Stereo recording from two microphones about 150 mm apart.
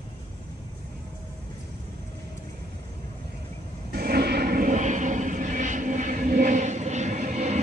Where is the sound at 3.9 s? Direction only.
90° right.